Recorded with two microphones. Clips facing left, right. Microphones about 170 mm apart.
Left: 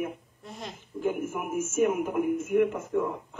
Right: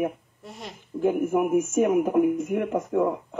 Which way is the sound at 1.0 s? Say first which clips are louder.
Right 8 dB; 60° right (ahead or behind).